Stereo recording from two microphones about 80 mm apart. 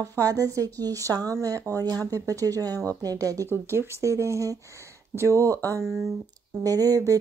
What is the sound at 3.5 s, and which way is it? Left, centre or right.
Speech, right.